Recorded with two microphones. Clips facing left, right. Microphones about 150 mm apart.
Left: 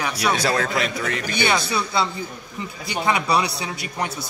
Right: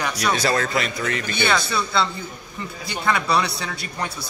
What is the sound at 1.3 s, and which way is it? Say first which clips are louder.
Speech: left 1 dB; 15° left (ahead or behind).